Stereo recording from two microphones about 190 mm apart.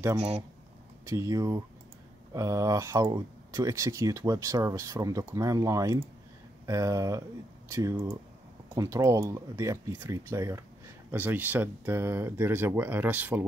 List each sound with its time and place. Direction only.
1.0 s speech: 15° right (ahead or behind)